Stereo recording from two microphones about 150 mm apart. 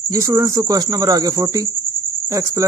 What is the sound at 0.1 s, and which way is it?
Speech, 20° right (ahead or behind).